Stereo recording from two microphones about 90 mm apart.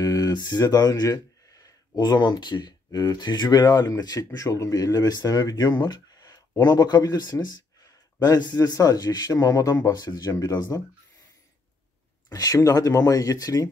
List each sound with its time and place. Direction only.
0.0 s speech: 45° left (ahead or behind)
12.3 s speech: 40° left (ahead or behind)